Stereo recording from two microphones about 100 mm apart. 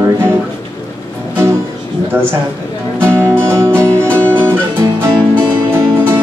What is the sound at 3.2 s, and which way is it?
Music, 25° right (ahead or behind).